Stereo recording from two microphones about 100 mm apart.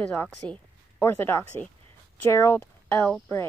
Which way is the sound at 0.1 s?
20° left (ahead or behind).